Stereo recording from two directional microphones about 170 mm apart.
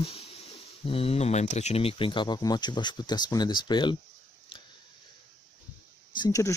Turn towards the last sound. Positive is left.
turn(degrees=20)  # may be behind; listen again after turning